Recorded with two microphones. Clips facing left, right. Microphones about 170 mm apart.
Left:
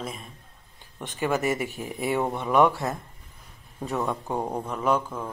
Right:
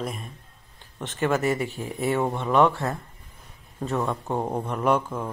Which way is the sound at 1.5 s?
20° left (ahead or behind).